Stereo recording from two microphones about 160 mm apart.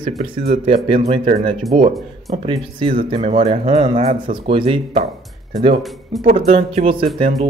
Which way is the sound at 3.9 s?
60° right (ahead or behind).